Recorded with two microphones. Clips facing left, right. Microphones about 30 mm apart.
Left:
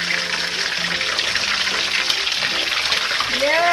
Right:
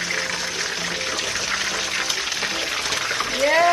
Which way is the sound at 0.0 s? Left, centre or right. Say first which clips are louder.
Left 3 dB; left.